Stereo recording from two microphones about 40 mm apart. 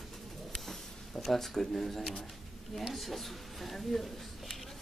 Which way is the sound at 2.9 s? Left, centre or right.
Centre.